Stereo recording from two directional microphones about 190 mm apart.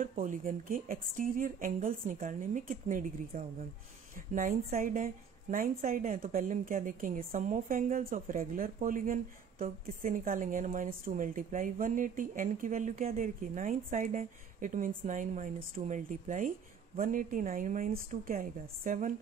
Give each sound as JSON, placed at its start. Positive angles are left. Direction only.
{"t": 0.0, "sound": "a woman's voice", "side_deg": -45}